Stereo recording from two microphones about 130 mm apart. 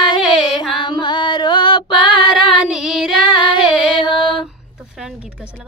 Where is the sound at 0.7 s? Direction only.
35° left (ahead or behind).